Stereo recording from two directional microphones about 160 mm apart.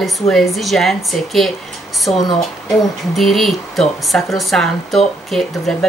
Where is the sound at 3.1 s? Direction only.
Centre (ahead or behind).